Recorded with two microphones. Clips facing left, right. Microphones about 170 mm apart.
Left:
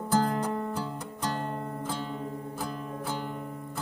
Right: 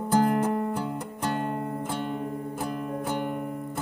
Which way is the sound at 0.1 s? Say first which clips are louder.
Right 4 dB; 15° right (ahead or behind).